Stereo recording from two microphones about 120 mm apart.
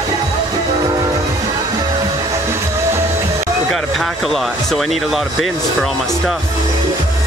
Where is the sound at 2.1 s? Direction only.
25° right (ahead or behind).